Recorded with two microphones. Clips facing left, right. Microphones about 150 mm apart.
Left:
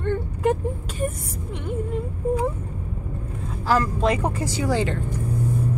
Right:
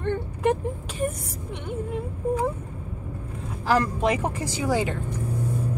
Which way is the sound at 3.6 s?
15° right (ahead or behind).